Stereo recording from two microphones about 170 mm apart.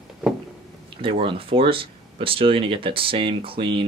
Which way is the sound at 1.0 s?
30° right (ahead or behind).